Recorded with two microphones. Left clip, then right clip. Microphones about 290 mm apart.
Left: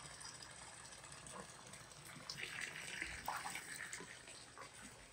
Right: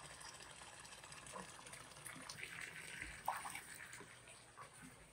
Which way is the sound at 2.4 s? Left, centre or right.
Left.